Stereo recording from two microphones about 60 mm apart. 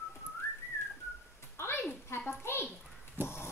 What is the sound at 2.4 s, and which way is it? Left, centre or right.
Speech, left.